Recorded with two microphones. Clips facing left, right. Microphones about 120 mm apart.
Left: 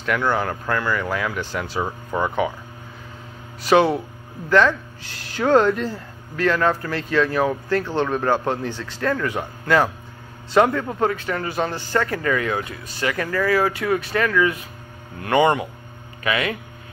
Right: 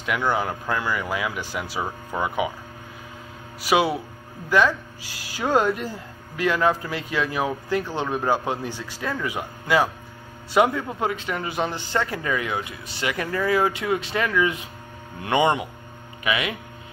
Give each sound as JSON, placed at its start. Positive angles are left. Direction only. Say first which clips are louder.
{"t": 0.0, "sound": "speech", "louder": "left 2 dB", "side_deg": -15}
{"t": 3.6, "sound": "speech", "louder": "left 4 dB", "side_deg": -10}